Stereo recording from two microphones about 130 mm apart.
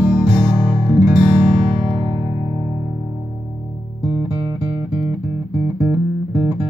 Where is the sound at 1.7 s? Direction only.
40° right (ahead or behind).